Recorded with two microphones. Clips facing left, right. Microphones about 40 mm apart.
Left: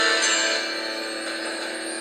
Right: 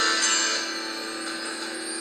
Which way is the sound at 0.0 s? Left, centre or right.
Left.